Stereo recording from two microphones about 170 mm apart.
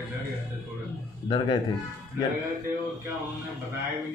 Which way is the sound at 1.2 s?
25° left (ahead or behind).